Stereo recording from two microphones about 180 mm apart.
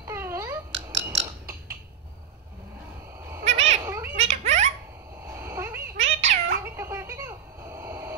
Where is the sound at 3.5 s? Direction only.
40° right (ahead or behind).